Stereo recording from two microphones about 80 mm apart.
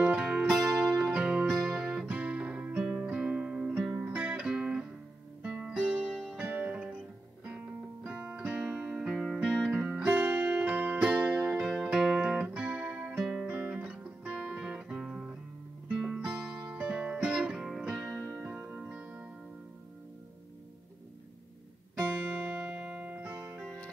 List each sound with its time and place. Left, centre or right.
0.0 s music: centre
6.4 s music: right
8.6 s music: centre
15.9 s guitar: centre
18.4 s music: centre
22.0 s music: centre